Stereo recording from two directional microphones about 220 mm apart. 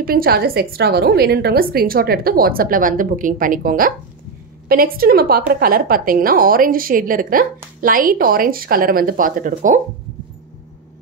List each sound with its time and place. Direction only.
0.0 s a woman's voice: 40° right (ahead or behind)